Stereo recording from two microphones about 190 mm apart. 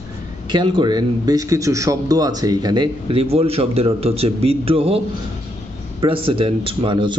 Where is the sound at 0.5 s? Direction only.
25° right (ahead or behind).